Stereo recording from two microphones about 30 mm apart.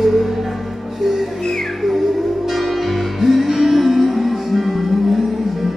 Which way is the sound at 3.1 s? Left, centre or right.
Centre.